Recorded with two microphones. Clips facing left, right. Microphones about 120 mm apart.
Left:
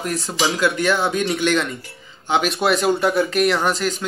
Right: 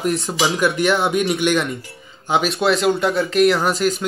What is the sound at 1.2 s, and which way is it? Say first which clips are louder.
Speech: right 1 dB; 10° right (ahead or behind).